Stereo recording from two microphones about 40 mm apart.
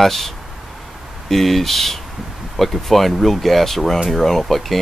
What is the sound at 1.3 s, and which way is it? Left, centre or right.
Speech, centre.